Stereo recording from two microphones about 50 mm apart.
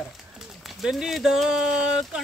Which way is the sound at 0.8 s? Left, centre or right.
Centre.